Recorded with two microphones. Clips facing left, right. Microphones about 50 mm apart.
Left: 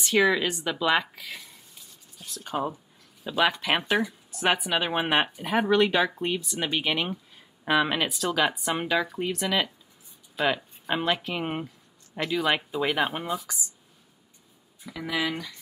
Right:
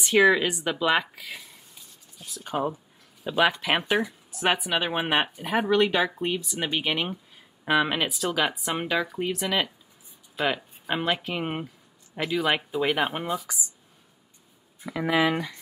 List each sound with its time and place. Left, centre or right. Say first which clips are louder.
0.0 s speech: right 3 dB; centre
14.8 s speech: right 6 dB; right